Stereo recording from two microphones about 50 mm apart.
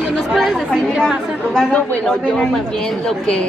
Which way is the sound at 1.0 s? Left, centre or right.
Centre.